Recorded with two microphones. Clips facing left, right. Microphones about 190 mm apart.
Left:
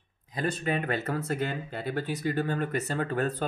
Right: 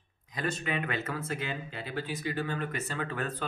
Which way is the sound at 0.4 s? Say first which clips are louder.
Left 3 dB; 40° left (ahead or behind).